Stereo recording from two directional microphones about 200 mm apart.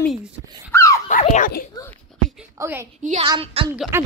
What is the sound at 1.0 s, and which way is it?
Speech, 40° left (ahead or behind).